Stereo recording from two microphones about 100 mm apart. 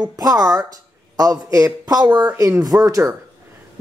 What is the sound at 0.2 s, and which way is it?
A man's voice, 35° right (ahead or behind).